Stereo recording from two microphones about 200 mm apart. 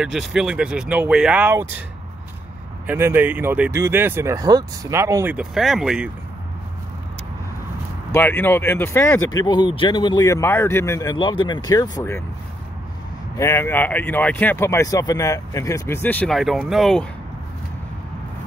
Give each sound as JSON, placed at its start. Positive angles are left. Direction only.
{"t": 0.0, "sound": "speech", "side_deg": 0}
{"t": 2.9, "sound": "speech", "side_deg": -10}
{"t": 8.1, "sound": "speech", "side_deg": 10}
{"t": 13.4, "sound": "speech", "side_deg": 15}